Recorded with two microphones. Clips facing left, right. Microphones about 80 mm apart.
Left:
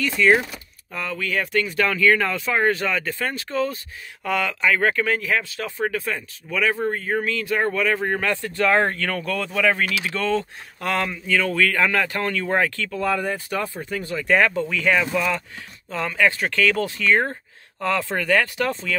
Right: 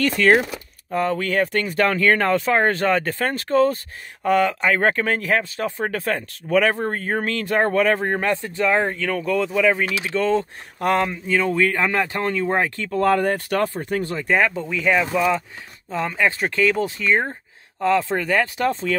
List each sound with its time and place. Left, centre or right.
0.0 s speech: right
0.9 s speech: right
8.1 s speech: right
12.9 s speech: right
14.1 s speech: right
14.4 s speech: centre
14.7 s speech: centre; by 18.9 s right